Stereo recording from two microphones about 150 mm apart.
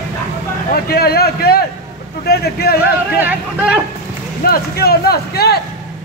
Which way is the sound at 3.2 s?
10° right (ahead or behind).